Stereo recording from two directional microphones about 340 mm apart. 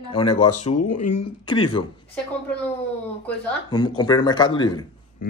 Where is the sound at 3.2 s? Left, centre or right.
Centre.